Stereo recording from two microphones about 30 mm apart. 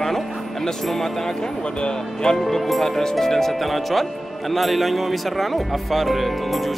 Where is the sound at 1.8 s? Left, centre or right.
Left.